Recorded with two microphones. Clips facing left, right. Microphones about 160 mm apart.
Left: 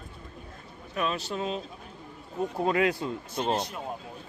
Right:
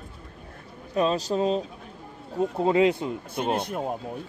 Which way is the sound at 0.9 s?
30° right (ahead or behind).